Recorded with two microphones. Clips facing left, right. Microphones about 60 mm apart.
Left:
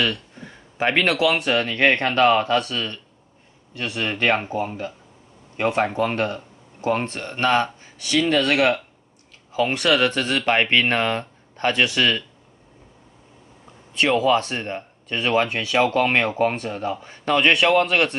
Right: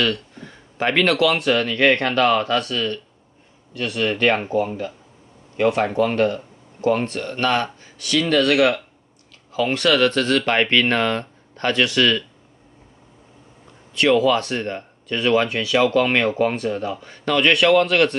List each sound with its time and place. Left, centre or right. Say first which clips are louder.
0.0 s speech: right 2 dB; centre
13.9 s speech: right 2 dB; left